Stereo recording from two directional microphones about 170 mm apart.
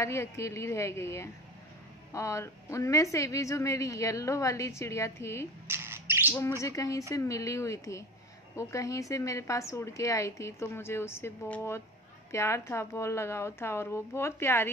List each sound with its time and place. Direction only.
0.0 s a woman's voice: 15° left (ahead or behind)
5.7 s bird: 15° right (ahead or behind)
6.3 s a woman's voice: 20° left (ahead or behind)